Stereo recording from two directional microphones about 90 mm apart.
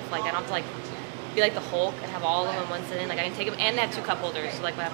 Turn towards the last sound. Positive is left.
turn(degrees=-15)  # may be behind; listen again after turning